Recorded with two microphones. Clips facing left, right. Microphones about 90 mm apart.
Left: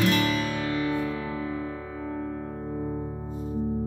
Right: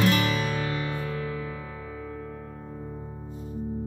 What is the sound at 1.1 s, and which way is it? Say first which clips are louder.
Music: left 2 dB; 20° left (ahead or behind).